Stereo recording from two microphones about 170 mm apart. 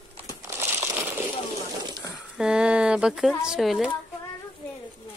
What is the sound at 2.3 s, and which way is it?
Speech, 5° right (ahead or behind).